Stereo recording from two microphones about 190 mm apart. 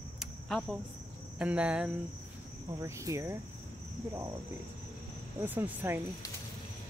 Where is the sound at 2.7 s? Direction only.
15° right (ahead or behind).